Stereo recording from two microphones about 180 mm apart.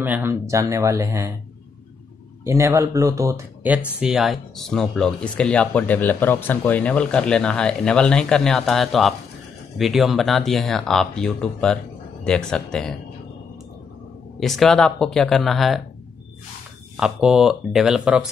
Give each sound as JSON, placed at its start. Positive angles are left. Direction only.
{"t": 0.0, "sound": "speech", "side_deg": -10}
{"t": 2.4, "sound": "speech", "side_deg": -15}
{"t": 14.4, "sound": "speech", "side_deg": 0}
{"t": 16.9, "sound": "speech", "side_deg": -5}